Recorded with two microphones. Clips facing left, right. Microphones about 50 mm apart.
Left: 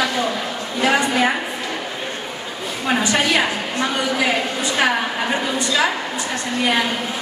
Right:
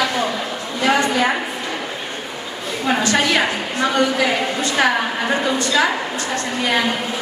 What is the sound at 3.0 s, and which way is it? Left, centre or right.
Speech, centre.